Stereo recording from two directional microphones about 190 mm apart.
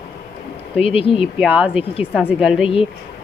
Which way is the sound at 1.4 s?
5° right (ahead or behind).